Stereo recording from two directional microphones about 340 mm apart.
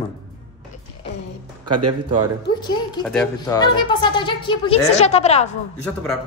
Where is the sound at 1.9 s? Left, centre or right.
Centre.